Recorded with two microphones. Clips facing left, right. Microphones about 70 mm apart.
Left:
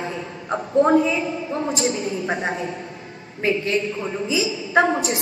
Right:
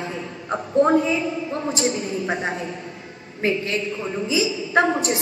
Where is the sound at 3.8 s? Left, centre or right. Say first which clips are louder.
Left 1 dB; left.